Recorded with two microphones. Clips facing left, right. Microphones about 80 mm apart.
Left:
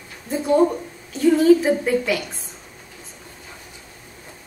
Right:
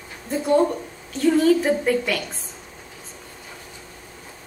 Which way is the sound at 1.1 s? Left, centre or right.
Centre.